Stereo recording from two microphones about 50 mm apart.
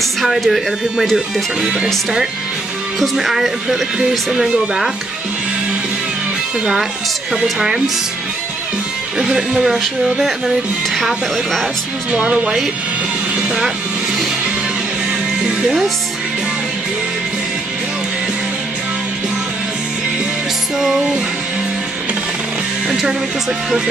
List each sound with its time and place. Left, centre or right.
0.0 s speech: centre
1.6 s speech: centre
3.0 s speech: centre
6.6 s speech: centre
9.2 s speech: centre
11.0 s speech: centre
12.1 s speech: right
20.8 s speech: centre